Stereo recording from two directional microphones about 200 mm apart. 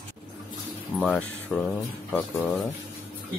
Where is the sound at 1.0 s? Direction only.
5° left (ahead or behind).